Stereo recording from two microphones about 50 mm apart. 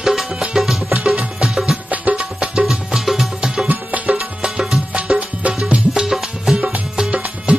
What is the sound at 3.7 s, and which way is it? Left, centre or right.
Music, right.